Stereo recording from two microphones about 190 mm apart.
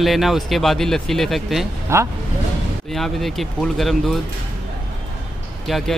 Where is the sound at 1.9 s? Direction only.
15° right (ahead or behind).